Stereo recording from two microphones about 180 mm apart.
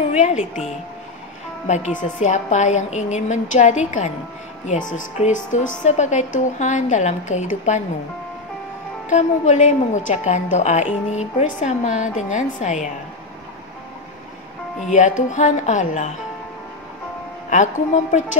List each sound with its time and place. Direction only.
0.1 s a woman's voice: 40° left (ahead or behind)
1.7 s a woman's voice: 40° left (ahead or behind)
9.1 s a woman's voice: 40° left (ahead or behind)
14.9 s speech: 45° left (ahead or behind)